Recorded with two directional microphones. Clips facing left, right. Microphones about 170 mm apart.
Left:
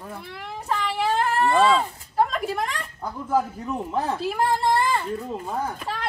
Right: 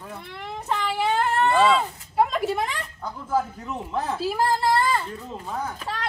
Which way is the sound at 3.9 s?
Centre (ahead or behind).